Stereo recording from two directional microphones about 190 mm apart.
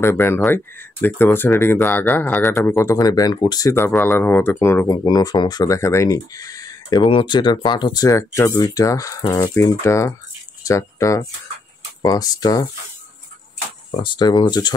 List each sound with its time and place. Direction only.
0.0 s speech: 10° left (ahead or behind)
13.9 s speech: 25° left (ahead or behind)